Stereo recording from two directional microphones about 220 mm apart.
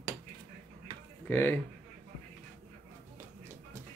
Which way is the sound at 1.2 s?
10° left (ahead or behind).